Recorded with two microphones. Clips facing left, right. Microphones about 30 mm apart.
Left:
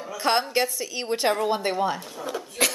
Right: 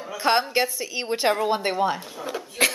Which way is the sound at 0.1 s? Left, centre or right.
Centre.